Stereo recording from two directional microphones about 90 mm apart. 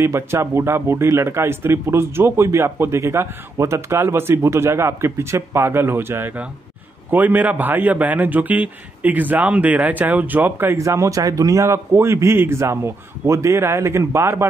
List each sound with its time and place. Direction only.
0.0 s a man's voice: 30° right (ahead or behind)
10.8 s a man's voice: 35° right (ahead or behind)